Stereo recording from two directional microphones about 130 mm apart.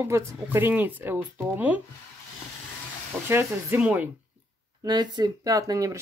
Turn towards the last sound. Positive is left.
turn(degrees=-25)  # may be behind; listen again after turning